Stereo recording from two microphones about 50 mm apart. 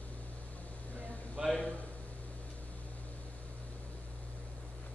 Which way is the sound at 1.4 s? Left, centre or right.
Centre.